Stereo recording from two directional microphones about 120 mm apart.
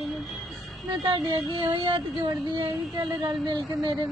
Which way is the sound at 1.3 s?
45° right (ahead or behind).